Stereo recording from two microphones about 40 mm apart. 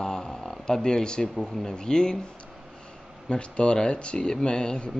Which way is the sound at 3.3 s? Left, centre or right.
Left.